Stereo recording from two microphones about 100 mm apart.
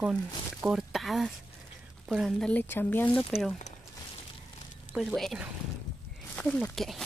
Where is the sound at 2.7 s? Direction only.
20° left (ahead or behind).